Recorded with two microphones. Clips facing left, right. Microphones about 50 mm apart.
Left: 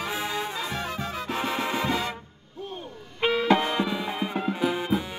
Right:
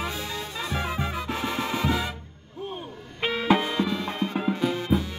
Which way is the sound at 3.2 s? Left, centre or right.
Centre.